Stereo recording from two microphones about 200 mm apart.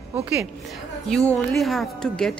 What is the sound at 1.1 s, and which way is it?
Music, 5° left (ahead or behind).